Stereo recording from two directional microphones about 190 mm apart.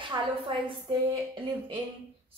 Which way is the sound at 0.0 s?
25° right (ahead or behind).